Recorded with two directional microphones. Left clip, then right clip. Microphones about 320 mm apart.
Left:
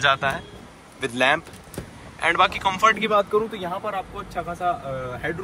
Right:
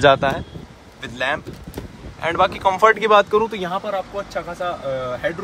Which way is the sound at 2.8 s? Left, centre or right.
Right.